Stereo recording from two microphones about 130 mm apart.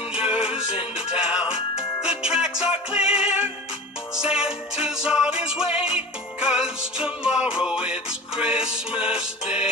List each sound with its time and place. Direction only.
0.1 s music: 5° right (ahead or behind)